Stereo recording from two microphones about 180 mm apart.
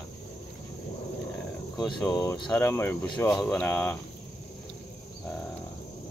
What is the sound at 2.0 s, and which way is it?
Speech, 20° left (ahead or behind).